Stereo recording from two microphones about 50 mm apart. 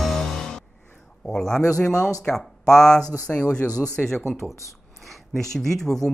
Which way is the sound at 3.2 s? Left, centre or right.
Left.